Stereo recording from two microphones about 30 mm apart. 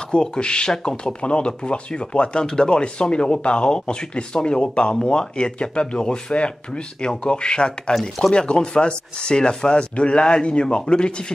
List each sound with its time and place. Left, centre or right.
0.3 s speech: left